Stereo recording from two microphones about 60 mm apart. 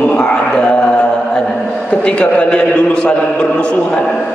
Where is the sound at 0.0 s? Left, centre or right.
Centre.